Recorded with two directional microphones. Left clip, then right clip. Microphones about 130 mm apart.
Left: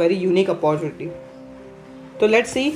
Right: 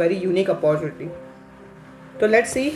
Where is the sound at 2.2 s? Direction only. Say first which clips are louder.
Left 1 dB; 55° left (ahead or behind).